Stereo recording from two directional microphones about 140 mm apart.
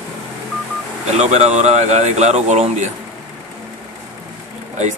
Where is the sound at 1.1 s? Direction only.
55° right (ahead or behind).